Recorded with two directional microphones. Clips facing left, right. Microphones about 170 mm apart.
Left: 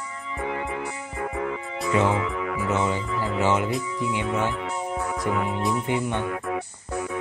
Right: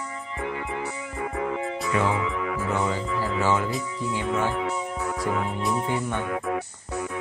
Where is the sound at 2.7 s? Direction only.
20° left (ahead or behind).